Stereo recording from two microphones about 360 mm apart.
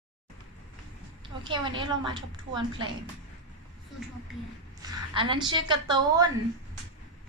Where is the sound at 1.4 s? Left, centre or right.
Centre.